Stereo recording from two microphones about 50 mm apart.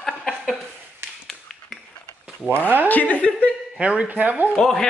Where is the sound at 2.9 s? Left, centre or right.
Left.